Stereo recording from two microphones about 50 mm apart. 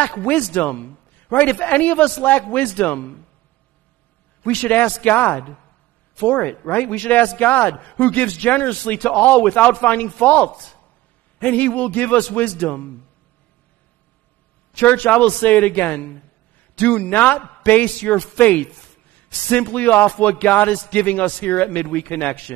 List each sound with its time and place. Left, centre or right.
0.0 s a man's voice: left
4.4 s a man's voice: left
14.7 s a man's voice: left